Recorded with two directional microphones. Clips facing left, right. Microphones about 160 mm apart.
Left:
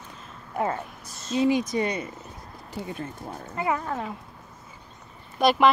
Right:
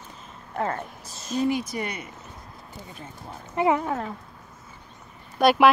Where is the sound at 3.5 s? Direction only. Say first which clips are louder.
Right 5 dB; 25° right (ahead or behind).